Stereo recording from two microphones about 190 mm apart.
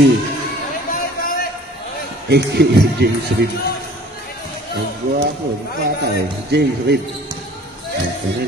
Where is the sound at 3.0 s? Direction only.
60° right (ahead or behind).